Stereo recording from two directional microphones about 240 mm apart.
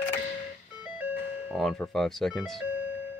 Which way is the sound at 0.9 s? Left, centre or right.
Centre.